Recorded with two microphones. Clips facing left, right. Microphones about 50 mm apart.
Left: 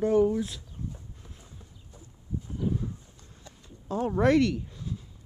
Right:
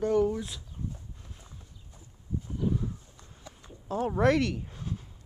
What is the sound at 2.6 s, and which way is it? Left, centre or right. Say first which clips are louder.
Horse: even; centre.